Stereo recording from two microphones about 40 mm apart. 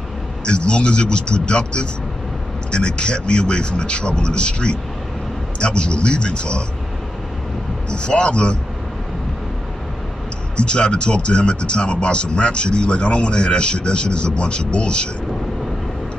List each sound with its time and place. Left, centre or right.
0.5 s speech: left
7.9 s speech: left
10.6 s speech: left